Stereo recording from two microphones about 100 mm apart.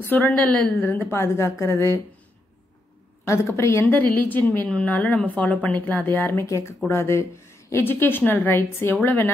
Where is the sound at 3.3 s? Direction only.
30° left (ahead or behind).